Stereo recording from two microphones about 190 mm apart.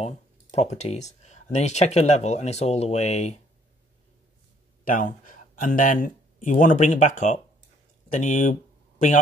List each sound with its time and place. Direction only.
0.0 s speech: 35° left (ahead or behind)
4.8 s speech: 45° left (ahead or behind)